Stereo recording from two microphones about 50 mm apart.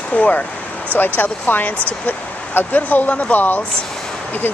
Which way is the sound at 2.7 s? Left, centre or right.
Left.